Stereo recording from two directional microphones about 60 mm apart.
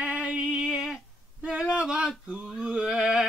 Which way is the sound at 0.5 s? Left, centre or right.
Centre.